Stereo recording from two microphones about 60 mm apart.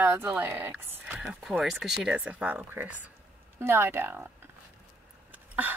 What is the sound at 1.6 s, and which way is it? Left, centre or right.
Speech, centre.